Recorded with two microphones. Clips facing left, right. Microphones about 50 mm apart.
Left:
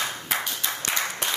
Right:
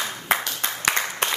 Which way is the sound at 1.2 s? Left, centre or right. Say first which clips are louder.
Right 4 dB; right.